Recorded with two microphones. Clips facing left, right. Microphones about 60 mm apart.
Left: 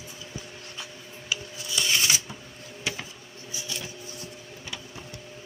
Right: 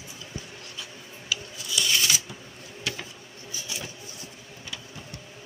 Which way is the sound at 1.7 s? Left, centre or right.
Left.